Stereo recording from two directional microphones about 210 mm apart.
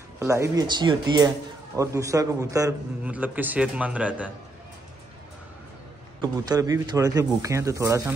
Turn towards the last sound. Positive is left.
turn(degrees=-15)  # may be behind; listen again after turning